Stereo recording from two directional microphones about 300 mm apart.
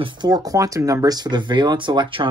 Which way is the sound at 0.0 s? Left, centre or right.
Centre.